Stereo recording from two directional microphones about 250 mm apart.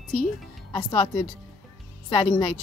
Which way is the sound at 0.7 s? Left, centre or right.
Centre.